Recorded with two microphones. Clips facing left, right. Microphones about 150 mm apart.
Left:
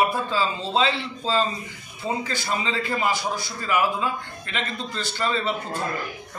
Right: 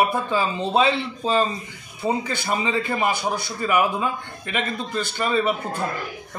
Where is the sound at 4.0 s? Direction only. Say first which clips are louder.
Right 1 dB; 15° right (ahead or behind).